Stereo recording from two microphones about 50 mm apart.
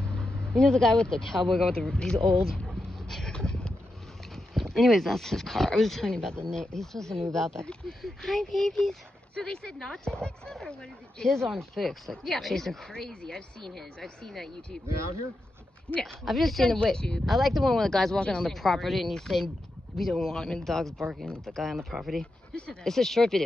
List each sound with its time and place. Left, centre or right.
0.0 s vehicle: centre
0.6 s speech: centre
1.7 s speech: centre
2.9 s vehicle: centre
4.6 s speech: centre
15.9 s speech: centre
16.3 s speech: centre
16.6 s speech: centre
17.3 s speech: centre
22.2 s speech: centre